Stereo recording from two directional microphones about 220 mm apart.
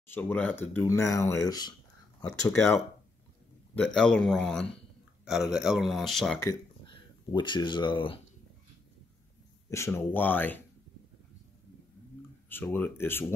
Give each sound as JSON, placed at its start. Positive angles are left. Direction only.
{"t": 0.1, "sound": "speech", "side_deg": 5}
{"t": 6.4, "sound": "speech", "side_deg": 20}
{"t": 9.7, "sound": "speech", "side_deg": 10}
{"t": 12.4, "sound": "speech", "side_deg": 10}